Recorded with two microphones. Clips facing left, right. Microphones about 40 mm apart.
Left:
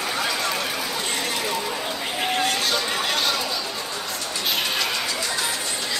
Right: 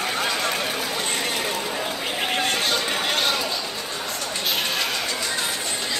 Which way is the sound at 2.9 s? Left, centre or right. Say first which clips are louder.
Right 1 dB; right.